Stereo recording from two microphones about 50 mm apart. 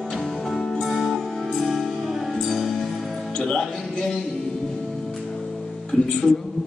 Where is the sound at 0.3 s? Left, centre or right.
Centre.